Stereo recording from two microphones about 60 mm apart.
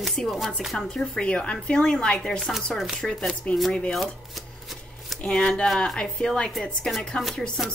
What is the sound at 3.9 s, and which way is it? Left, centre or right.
Shuffling cards, centre.